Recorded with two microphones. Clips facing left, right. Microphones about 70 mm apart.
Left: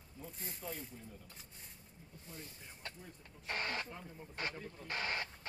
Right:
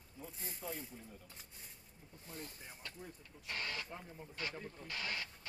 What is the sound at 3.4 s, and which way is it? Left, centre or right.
Speech, left.